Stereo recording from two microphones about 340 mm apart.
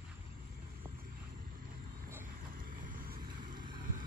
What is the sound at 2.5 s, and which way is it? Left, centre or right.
Vehicle, right.